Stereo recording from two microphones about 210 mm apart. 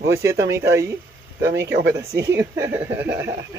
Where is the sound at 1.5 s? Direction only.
55° right (ahead or behind).